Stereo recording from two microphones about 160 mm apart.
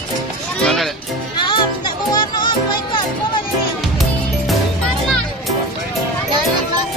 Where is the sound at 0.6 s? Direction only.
Centre (ahead or behind).